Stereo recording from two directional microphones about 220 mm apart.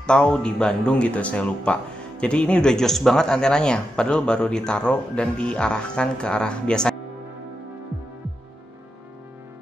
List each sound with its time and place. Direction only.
0.0 s speech: 5° left (ahead or behind)